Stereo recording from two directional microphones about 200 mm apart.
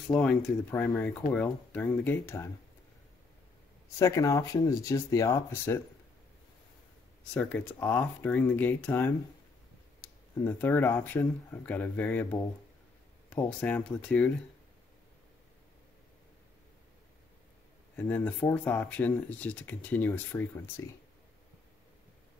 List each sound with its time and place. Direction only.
0.1 s speech: 5° left (ahead or behind)
4.0 s speech: 15° left (ahead or behind)
7.3 s speech: 5° left (ahead or behind)
17.9 s speech: 10° left (ahead or behind)